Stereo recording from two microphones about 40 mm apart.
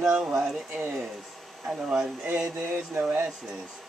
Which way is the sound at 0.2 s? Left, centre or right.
Right.